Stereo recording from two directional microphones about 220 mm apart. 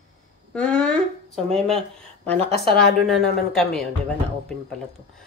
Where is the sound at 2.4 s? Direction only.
25° right (ahead or behind).